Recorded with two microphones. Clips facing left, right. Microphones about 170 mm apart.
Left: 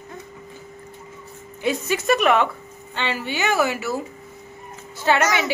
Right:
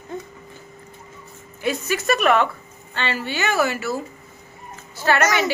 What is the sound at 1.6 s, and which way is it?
A woman's voice, 20° left (ahead or behind).